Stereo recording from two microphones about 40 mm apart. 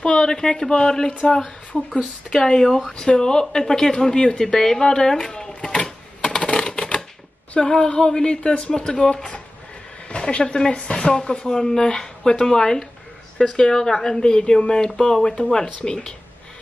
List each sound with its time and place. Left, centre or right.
0.0 s speech: left
1.7 s speech: right
2.2 s speech: centre
5.9 s typewriter: centre
7.5 s speech: centre